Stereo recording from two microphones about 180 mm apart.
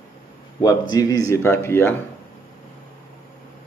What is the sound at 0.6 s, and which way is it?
Speech, 20° left (ahead or behind).